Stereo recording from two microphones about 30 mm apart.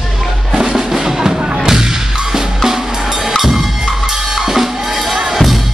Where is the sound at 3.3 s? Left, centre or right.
Centre.